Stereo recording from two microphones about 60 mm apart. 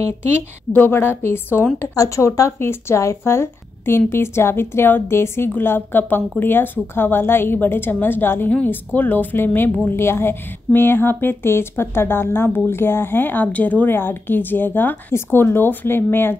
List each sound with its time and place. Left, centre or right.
0.7 s speech: left
2.0 s a woman's voice: left